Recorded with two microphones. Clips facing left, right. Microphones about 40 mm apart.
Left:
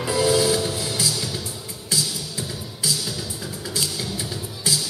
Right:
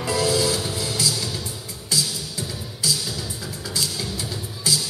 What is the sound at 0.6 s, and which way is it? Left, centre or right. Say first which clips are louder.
Music: left 2 dB; centre.